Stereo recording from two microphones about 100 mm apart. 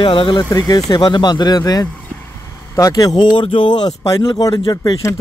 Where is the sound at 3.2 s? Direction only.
55° left (ahead or behind).